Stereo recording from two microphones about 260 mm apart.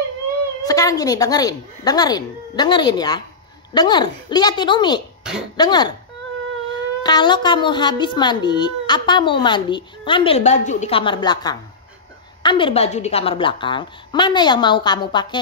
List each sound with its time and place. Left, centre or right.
0.7 s a woman's voice: centre